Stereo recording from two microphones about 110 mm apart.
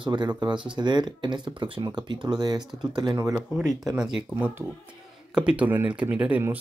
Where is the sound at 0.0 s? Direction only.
45° right (ahead or behind).